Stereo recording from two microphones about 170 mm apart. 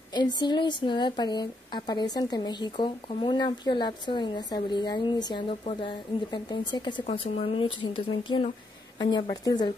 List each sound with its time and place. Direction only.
0.1 s a woman's voice: 25° left (ahead or behind)